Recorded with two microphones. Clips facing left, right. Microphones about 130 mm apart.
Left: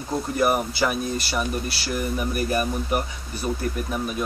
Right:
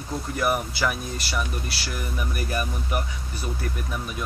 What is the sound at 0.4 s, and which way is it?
Speech, 25° left (ahead or behind).